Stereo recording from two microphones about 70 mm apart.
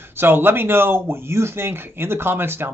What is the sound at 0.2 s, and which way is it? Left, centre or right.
Speech, right.